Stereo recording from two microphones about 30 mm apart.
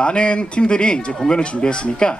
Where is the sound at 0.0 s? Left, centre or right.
Left.